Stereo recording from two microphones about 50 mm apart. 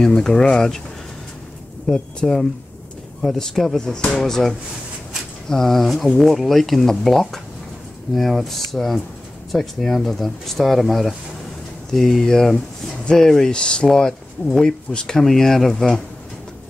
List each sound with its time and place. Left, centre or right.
0.0 s speech: centre
1.9 s speech: centre
5.5 s speech: centre
15.1 s speech: centre